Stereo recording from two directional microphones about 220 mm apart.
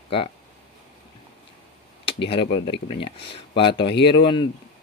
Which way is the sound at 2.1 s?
50° left (ahead or behind).